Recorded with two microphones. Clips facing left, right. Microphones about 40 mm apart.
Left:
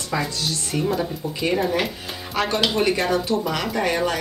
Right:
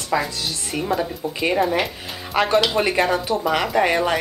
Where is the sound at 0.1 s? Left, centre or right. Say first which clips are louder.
Right 2 dB; centre.